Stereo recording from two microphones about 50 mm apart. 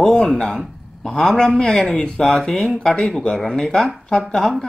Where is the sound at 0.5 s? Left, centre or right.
Centre.